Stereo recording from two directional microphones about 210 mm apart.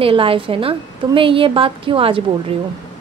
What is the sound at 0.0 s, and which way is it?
Speech, 25° right (ahead or behind).